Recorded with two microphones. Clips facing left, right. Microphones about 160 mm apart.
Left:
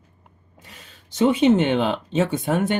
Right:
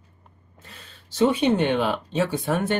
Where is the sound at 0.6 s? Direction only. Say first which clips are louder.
Even; 20° left (ahead or behind).